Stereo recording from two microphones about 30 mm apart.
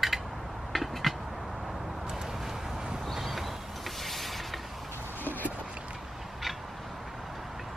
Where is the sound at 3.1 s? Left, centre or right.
Centre.